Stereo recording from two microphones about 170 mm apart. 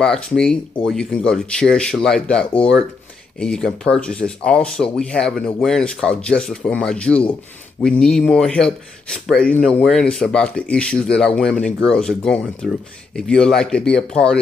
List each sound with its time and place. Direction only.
0.0 s speech: 5° left (ahead or behind)